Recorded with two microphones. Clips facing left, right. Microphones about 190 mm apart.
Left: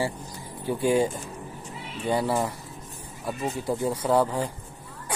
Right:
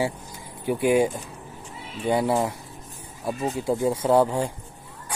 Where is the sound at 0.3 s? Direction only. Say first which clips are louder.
Right 3 dB; 15° right (ahead or behind).